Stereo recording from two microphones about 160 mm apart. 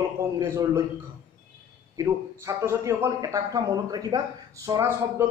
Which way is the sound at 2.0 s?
20° right (ahead or behind).